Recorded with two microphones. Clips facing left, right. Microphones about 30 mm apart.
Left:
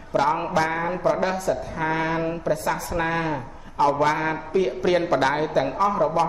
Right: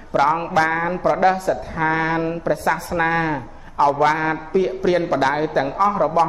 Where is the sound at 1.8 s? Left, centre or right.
Right.